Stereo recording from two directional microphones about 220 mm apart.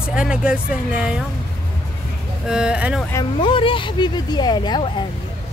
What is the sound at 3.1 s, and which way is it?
Speech, 25° left (ahead or behind).